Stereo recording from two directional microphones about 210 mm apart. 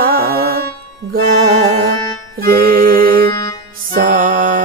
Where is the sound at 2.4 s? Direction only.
45° right (ahead or behind).